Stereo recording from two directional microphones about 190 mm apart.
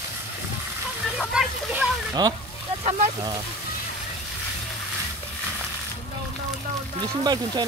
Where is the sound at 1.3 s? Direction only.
5° right (ahead or behind).